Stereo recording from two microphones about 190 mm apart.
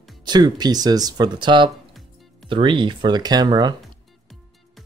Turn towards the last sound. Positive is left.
turn(degrees=-20)  # may be behind; listen again after turning